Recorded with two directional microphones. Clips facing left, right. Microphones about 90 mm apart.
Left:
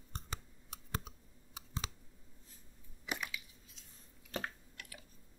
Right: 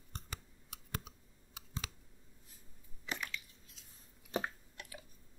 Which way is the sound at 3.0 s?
10° left (ahead or behind).